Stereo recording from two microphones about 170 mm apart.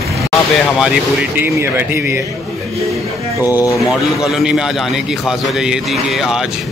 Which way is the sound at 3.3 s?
20° left (ahead or behind).